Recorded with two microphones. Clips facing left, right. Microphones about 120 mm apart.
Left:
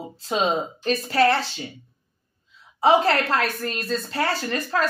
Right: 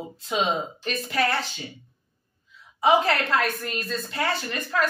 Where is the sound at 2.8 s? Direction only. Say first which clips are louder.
Left 2 dB; 35° left (ahead or behind).